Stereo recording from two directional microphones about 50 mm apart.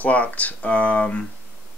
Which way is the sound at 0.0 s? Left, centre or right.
Left.